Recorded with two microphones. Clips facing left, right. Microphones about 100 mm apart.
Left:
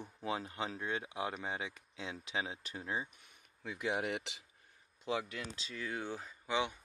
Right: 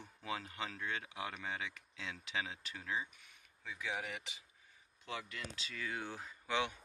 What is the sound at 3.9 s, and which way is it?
Speech, 65° left (ahead or behind).